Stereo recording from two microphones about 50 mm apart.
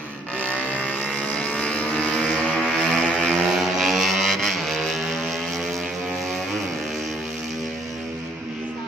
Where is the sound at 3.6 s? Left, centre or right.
Centre.